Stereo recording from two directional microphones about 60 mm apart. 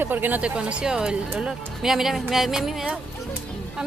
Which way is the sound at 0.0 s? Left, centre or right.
Right.